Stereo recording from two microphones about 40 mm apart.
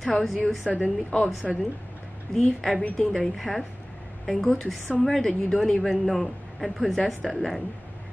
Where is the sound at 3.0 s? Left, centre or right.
Centre.